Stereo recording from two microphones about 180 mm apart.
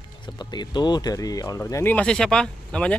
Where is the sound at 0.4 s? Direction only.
25° left (ahead or behind); by 3.0 s 5° left (ahead or behind).